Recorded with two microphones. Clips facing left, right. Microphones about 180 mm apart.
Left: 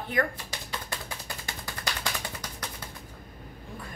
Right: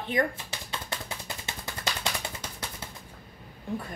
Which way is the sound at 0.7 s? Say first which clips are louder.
Right 1 dB; 25° right (ahead or behind).